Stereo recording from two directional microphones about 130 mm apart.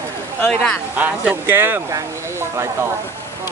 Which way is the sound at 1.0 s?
15° right (ahead or behind).